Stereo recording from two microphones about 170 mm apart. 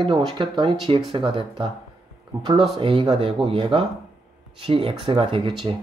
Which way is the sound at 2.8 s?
30° right (ahead or behind).